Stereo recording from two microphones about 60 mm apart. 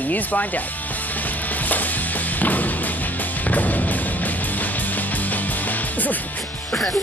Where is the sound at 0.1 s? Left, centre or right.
Left.